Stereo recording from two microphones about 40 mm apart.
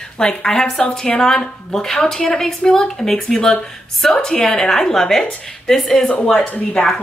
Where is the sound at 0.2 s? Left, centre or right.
Left.